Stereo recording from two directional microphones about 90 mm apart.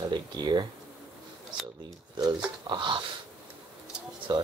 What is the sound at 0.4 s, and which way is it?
Speech, 60° right (ahead or behind).